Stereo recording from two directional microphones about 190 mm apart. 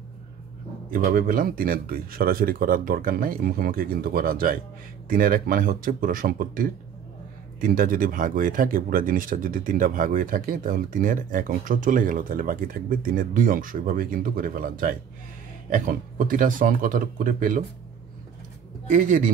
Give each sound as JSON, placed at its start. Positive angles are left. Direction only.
{"t": 0.8, "sound": "speech", "side_deg": -45}
{"t": 18.9, "sound": "speech", "side_deg": -45}